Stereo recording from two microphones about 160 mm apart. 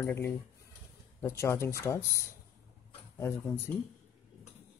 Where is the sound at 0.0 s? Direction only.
15° left (ahead or behind).